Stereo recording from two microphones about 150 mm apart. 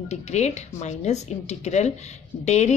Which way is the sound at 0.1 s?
50° left (ahead or behind).